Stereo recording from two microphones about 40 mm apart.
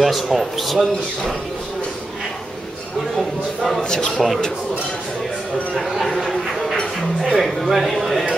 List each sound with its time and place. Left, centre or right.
0.0 s speech: centre
3.2 s speech: centre
5.8 s a sound: centre